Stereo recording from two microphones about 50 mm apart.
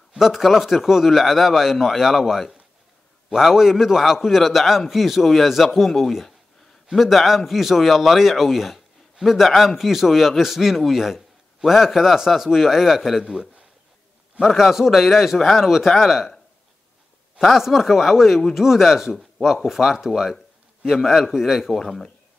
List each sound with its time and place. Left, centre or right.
0.1 s a man's voice: centre
17.4 s a man's voice: centre
21.7 s speech: centre